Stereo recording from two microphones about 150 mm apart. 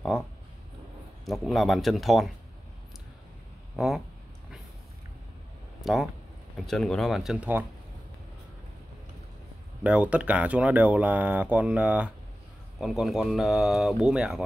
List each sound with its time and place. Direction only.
1.2 s speech: centre (ahead or behind)
3.7 s speech: centre (ahead or behind)
5.8 s a sound: centre (ahead or behind)
6.5 s speech: centre (ahead or behind)
9.8 s speech: 10° right (ahead or behind)